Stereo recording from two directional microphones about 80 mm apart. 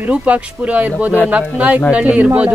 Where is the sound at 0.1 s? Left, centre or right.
Centre.